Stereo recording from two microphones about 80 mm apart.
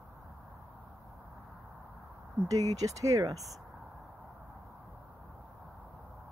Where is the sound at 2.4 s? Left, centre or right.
Right.